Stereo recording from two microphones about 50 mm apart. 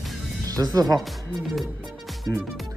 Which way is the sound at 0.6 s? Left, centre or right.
Right.